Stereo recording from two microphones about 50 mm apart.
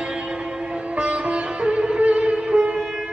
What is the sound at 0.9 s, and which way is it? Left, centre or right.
Sitar, right.